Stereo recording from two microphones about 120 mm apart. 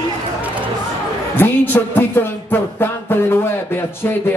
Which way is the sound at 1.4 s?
15° left (ahead or behind).